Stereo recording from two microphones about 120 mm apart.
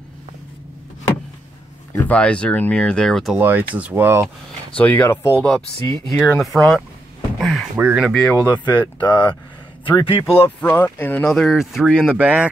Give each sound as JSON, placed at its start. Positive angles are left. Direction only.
{"t": 2.0, "sound": "speech", "side_deg": 10}
{"t": 3.3, "sound": "speech", "side_deg": -15}
{"t": 4.7, "sound": "speech", "side_deg": 15}
{"t": 7.3, "sound": "a sound", "side_deg": 0}
{"t": 7.7, "sound": "speech", "side_deg": -15}
{"t": 8.5, "sound": "speech", "side_deg": 40}
{"t": 10.3, "sound": "speech", "side_deg": 15}
{"t": 11.2, "sound": "speech", "side_deg": 0}